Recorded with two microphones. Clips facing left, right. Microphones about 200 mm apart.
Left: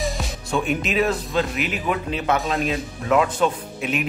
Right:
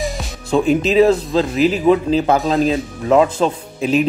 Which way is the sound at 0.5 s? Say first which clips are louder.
Right 9 dB; 30° right (ahead or behind).